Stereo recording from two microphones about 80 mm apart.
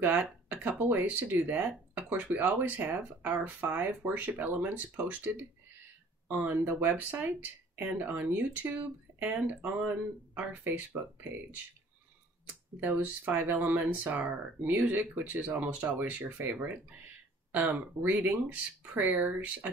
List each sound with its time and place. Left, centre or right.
0.2 s speech: right
12.8 s speech: right